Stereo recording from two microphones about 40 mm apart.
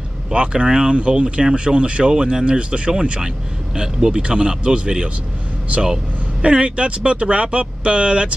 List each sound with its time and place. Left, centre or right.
0.3 s speech: right
6.4 s speech: right